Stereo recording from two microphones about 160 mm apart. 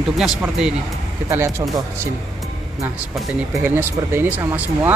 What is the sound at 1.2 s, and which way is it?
Speech, 15° right (ahead or behind).